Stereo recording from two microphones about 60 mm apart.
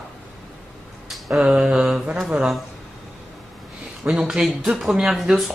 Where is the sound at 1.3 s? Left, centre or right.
Centre.